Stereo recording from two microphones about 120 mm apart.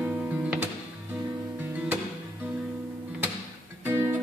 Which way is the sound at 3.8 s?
15° right (ahead or behind).